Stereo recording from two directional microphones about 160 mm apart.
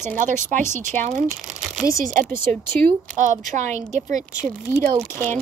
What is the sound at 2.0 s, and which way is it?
Speech, 55° right (ahead or behind).